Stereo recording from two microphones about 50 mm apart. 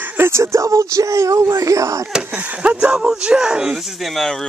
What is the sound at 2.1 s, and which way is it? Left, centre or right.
Speech, centre.